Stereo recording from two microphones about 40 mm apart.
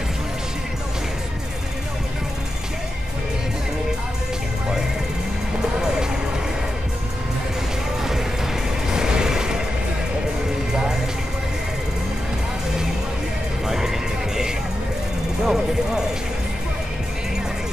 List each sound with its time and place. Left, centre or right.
8.0 s music: centre
10.7 s music: centre
13.7 s music: centre
15.4 s mechanisms: centre